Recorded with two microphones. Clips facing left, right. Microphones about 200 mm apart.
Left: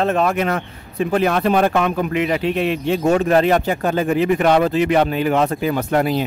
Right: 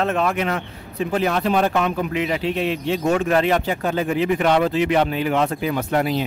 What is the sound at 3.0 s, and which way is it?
Speech, 35° left (ahead or behind).